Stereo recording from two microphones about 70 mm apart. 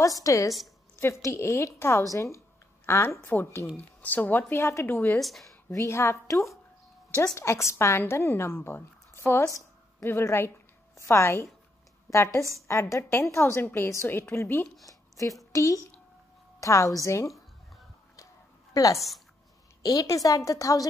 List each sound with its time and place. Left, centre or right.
0.0 s a woman's voice: left
0.9 s a woman's voice: left
4.0 s a woman's voice: left
5.2 s speech: centre
5.7 s a woman's voice: left
14.9 s a sound: left
15.5 s a woman's voice: left
18.1 s a sound: left
18.9 s speech: centre
19.8 s a woman's voice: left